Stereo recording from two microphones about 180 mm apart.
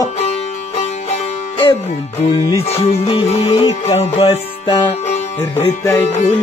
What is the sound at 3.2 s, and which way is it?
Music, 35° left (ahead or behind).